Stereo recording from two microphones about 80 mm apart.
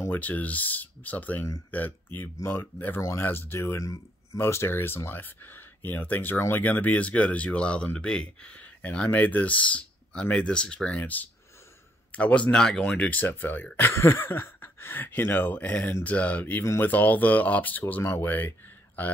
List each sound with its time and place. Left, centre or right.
0.1 s speech: left